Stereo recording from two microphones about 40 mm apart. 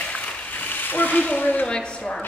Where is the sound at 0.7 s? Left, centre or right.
Left.